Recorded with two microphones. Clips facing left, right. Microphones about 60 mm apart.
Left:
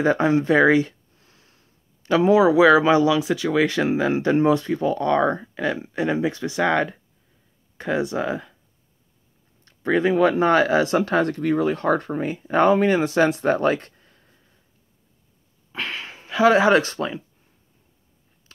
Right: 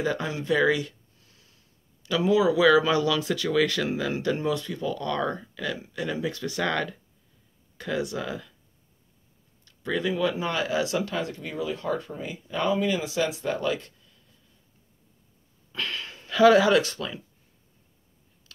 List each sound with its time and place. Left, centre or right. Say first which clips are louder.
0.0 s a sound: left 10 dB; left
2.0 s speech: left 6 dB; left
9.7 s speech: left 8 dB; left
15.7 s wheeze: left 3 dB; left
16.3 s speech: left 2 dB; left